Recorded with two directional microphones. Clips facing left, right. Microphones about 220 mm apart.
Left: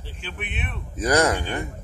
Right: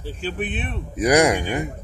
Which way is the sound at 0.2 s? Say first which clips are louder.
Right 8 dB; 35° right (ahead or behind).